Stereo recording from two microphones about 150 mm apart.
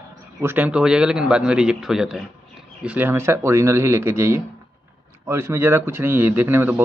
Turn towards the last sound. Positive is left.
turn(degrees=-15)  # may be behind; listen again after turning